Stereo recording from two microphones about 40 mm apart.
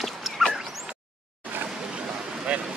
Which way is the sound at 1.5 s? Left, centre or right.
Right.